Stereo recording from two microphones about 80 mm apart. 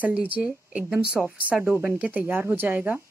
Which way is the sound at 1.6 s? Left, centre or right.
Right.